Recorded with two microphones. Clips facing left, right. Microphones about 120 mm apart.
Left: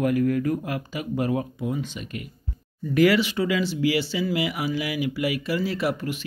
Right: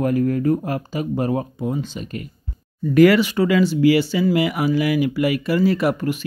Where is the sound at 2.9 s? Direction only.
50° right (ahead or behind).